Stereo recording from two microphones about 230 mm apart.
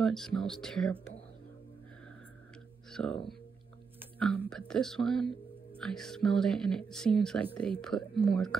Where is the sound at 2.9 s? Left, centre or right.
Centre.